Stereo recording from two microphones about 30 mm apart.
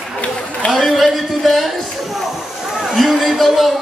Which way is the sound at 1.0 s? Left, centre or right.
Centre.